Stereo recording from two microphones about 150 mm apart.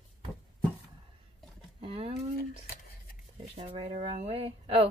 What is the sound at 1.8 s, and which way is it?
Speech, 40° right (ahead or behind).